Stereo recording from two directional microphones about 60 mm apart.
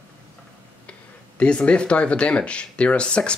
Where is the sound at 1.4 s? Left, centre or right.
Centre.